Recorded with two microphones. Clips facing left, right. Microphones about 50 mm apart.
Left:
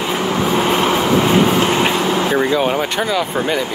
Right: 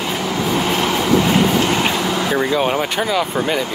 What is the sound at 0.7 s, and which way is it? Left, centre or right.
Vehicle, left.